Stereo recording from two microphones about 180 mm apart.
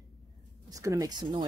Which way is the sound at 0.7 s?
20° right (ahead or behind).